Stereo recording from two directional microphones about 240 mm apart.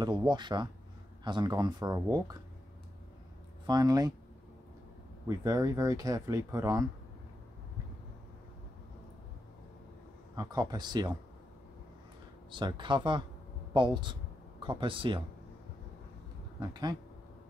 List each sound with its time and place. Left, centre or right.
0.0 s speech: centre
3.6 s speech: centre
5.3 s speech: centre
10.3 s speech: centre
12.4 s speech: centre
16.5 s speech: centre